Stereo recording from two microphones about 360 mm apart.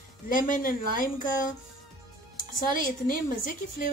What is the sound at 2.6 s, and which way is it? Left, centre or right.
Speech, left.